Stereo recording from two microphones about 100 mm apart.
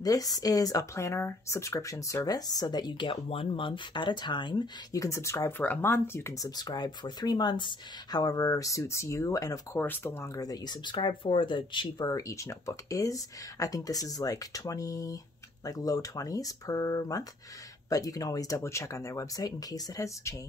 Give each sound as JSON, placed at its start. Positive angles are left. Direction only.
{"t": 0.0, "sound": "speech", "side_deg": 35}
{"t": 4.9, "sound": "speech", "side_deg": 30}
{"t": 5.6, "sound": "speech", "side_deg": 20}
{"t": 9.8, "sound": "speech", "side_deg": 20}
{"t": 12.1, "sound": "speech", "side_deg": 35}